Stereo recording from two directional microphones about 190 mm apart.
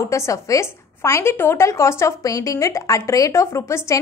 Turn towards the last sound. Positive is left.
turn(degrees=15)  # may be behind; listen again after turning